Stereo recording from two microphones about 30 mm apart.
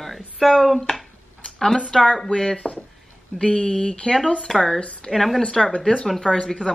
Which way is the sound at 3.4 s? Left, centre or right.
Left.